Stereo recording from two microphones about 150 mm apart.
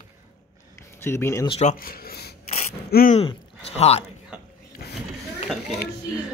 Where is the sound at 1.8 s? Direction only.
80° left.